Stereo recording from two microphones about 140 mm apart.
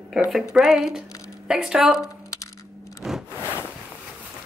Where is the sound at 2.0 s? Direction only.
20° left (ahead or behind).